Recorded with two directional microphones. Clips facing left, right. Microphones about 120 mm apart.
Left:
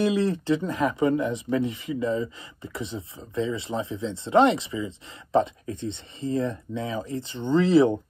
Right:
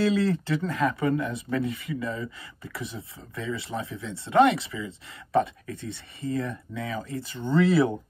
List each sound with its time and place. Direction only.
0.0 s speech: 20° left (ahead or behind)